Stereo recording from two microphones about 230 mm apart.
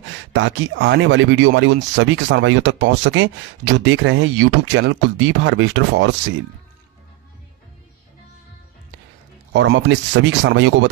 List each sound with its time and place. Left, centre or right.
0.3 s speech: right
9.5 s speech: right